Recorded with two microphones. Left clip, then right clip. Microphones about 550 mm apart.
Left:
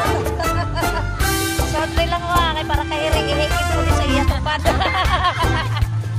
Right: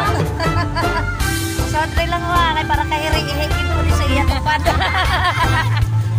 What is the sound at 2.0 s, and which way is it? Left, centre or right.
Music, left.